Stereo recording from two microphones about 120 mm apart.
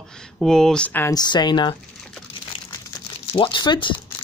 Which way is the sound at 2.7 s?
35° left (ahead or behind).